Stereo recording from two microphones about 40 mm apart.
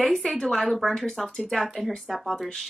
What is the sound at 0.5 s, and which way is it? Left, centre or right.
Speech, centre.